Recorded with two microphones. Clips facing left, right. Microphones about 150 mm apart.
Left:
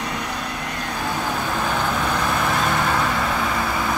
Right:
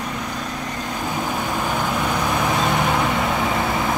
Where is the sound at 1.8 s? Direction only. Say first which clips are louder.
Even; 15° right (ahead or behind).